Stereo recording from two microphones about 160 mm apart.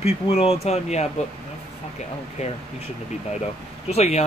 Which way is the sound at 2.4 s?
40° left (ahead or behind).